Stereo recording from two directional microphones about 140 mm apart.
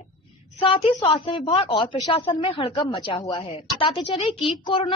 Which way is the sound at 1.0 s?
40° left (ahead or behind).